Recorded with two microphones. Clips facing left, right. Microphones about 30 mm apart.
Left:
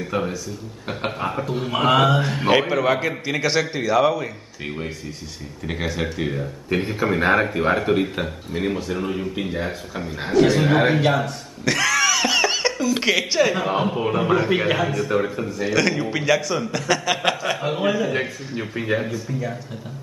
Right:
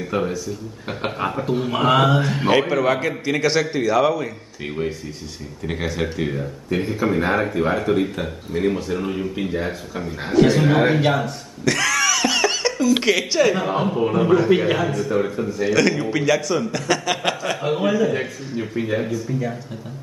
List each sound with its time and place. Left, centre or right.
0.0 s a man's voice: centre
6.7 s a man's voice: centre